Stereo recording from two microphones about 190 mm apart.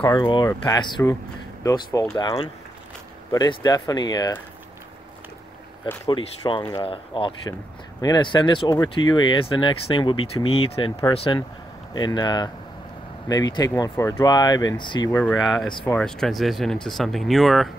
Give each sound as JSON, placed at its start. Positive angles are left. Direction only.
{"t": 0.0, "sound": "speech", "side_deg": 25}
{"t": 6.0, "sound": "speech", "side_deg": 25}
{"t": 15.1, "sound": "speech", "side_deg": 5}